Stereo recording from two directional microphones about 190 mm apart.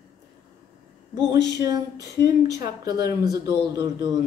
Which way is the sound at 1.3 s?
65° left (ahead or behind).